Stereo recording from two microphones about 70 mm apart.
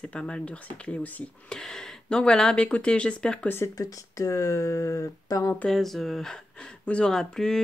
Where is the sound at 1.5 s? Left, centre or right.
Centre.